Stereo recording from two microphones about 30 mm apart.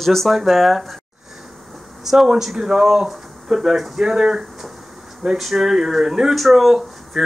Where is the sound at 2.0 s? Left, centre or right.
Centre.